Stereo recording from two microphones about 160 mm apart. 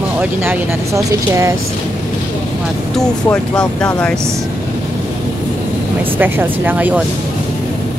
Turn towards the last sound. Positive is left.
turn(degrees=-10)  # may be behind; listen again after turning